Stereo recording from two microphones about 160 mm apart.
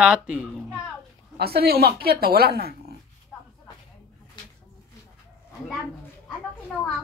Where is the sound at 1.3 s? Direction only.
75° right (ahead or behind).